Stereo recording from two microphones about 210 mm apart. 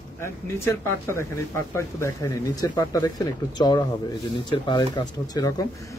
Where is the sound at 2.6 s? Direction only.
15° left (ahead or behind).